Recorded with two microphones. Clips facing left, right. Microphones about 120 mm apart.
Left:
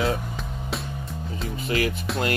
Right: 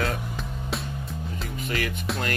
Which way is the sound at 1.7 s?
35° left (ahead or behind).